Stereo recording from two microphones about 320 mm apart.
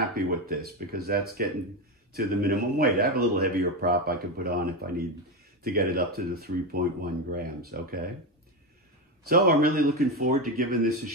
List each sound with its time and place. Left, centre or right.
0.1 s speech: right
9.3 s speech: right